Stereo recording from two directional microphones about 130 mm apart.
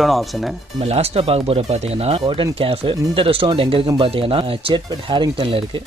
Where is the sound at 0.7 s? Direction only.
50° right (ahead or behind).